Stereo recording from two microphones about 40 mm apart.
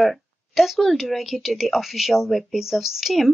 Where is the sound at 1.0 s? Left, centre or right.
Centre.